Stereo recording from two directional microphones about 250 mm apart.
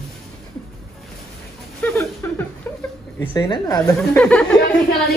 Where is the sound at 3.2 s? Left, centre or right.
Centre.